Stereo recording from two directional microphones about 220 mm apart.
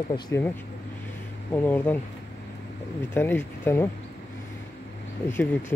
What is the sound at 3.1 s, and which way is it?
Speech, 10° left (ahead or behind).